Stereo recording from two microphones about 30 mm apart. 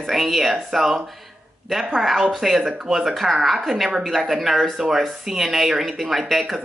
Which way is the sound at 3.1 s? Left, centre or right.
Centre.